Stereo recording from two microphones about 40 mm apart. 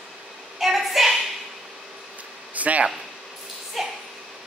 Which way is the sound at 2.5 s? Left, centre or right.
Right.